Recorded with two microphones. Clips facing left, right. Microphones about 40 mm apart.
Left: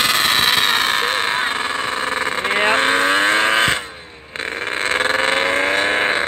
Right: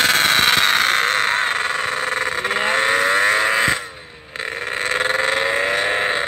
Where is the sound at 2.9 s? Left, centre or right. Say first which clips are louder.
Left 1 dB; left.